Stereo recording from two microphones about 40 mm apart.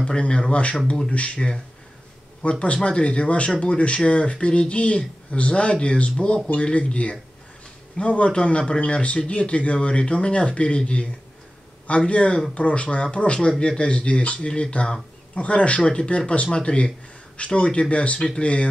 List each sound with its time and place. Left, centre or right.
0.2 s speech: left
2.6 s speech: left
12.1 s speech: left